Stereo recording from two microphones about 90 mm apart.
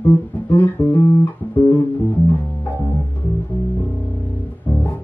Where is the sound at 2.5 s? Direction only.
20° left (ahead or behind).